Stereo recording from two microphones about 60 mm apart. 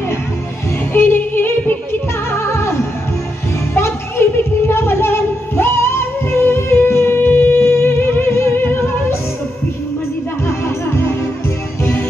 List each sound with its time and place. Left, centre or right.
0.9 s music: left
3.7 s music: left
10.4 s music: left